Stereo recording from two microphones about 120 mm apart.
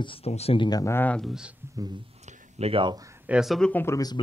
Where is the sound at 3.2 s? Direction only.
5° right (ahead or behind).